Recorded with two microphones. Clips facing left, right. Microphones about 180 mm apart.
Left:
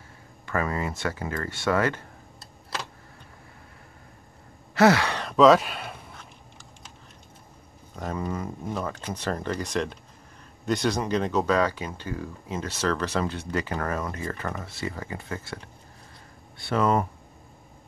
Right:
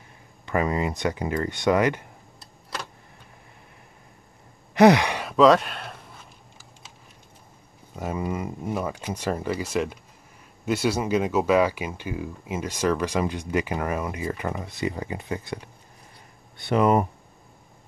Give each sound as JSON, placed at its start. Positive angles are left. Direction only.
{"t": 0.5, "sound": "speech", "side_deg": -20}
{"t": 4.7, "sound": "speech", "side_deg": -15}
{"t": 7.9, "sound": "speech", "side_deg": -10}